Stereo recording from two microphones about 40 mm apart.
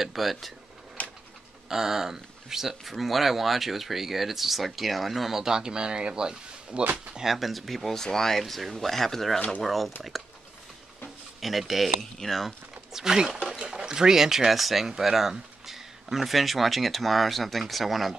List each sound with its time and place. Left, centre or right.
0.0 s speech: centre
1.0 s a sound: left
1.7 s speech: centre
7.2 s speech: centre
11.4 s speech: centre
12.9 s speech: centre